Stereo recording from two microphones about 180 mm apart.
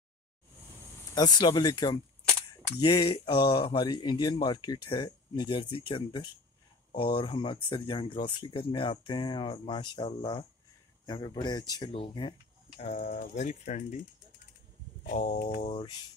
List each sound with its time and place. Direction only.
1.1 s speech: 25° left (ahead or behind)
12.8 s speech: 40° left (ahead or behind)
15.0 s speech: 35° left (ahead or behind)